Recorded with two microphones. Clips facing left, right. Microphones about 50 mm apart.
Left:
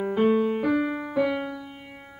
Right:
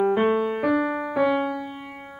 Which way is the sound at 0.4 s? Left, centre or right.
Right.